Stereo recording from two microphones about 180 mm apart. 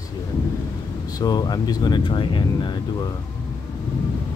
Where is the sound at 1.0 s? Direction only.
20° left (ahead or behind).